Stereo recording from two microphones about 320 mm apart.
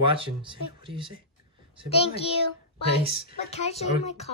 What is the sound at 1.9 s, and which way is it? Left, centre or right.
Speech, centre.